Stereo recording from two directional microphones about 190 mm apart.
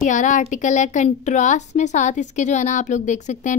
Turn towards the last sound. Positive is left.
turn(degrees=40)  # may be behind; listen again after turning